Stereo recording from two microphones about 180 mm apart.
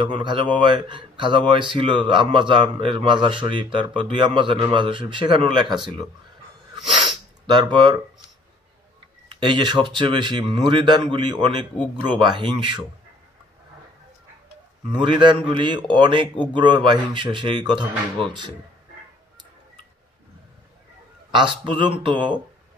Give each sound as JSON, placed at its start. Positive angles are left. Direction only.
{"t": 0.0, "sound": "speech", "side_deg": -30}
{"t": 7.5, "sound": "speech", "side_deg": -25}
{"t": 9.3, "sound": "speech", "side_deg": -25}
{"t": 14.9, "sound": "speech", "side_deg": -25}
{"t": 21.3, "sound": "speech", "side_deg": -25}